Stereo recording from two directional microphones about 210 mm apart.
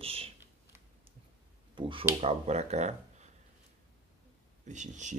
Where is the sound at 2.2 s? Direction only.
30° right (ahead or behind).